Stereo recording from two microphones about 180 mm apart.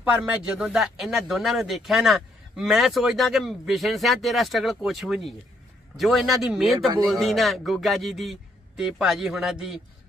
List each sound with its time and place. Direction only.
0.0 s speech: 10° right (ahead or behind)